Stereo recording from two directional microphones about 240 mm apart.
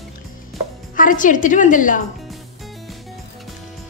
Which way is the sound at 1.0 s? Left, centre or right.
Left.